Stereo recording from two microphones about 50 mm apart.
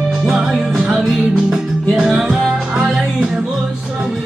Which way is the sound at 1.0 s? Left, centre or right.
Centre.